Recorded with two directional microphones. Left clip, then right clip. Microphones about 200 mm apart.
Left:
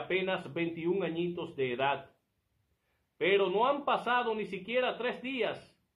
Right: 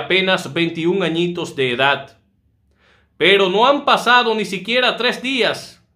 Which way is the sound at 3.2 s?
20° right (ahead or behind).